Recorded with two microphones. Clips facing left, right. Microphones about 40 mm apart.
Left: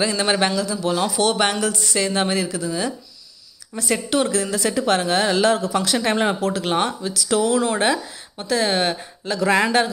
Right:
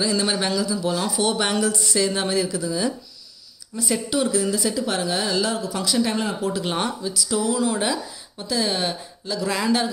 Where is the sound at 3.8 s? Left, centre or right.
Left.